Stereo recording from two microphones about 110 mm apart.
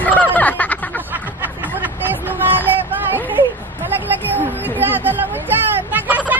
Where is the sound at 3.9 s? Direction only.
20° right (ahead or behind).